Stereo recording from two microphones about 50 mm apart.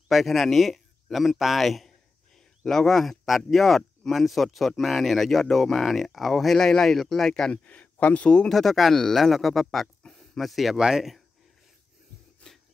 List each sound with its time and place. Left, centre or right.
0.1 s speech: centre
7.5 s speech: left
8.5 s speech: centre
12.4 s a sound: left